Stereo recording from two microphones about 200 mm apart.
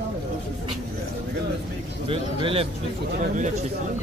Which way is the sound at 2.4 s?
30° right (ahead or behind).